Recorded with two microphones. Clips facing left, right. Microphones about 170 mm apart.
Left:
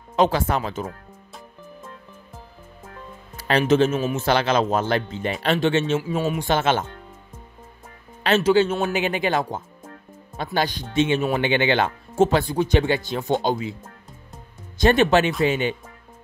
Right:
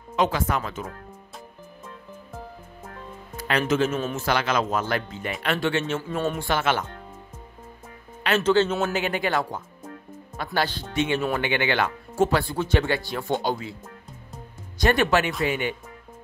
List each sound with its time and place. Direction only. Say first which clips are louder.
0.1 s speech: left 4 dB; 35° left (ahead or behind)
3.3 s speech: left 5 dB; 30° left (ahead or behind)
3.9 s speech: left 4 dB; 5° left (ahead or behind)
4.2 s speech: left 4 dB; 30° left (ahead or behind)
5.9 s speech: left 3 dB; 5° left (ahead or behind)
6.4 s speech: left 3 dB; 25° left (ahead or behind)
8.4 s speech: left 2 dB; 10° left (ahead or behind)
14.8 s speech: left 4 dB; 25° left (ahead or behind)